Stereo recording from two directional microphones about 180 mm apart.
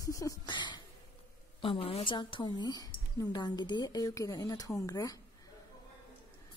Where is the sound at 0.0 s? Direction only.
20° left (ahead or behind).